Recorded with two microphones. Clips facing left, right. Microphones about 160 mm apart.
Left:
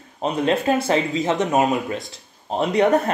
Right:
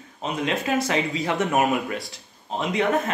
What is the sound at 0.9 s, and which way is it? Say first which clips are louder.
Speech: left 4 dB; 25° left (ahead or behind).